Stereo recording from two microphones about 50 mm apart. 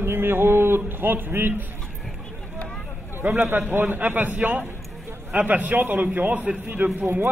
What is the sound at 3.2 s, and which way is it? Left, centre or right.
A man's voice, right.